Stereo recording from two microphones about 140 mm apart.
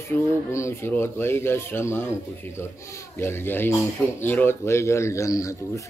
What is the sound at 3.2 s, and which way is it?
A man's voice, 15° left (ahead or behind).